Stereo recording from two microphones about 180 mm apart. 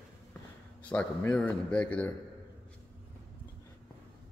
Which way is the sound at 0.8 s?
5° left (ahead or behind).